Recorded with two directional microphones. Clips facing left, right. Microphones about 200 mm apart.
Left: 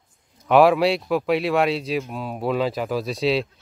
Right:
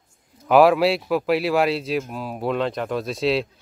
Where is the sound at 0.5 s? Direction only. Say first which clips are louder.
Even; centre (ahead or behind).